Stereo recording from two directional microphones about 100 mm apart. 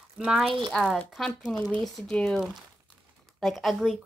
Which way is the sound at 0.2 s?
Centre (ahead or behind).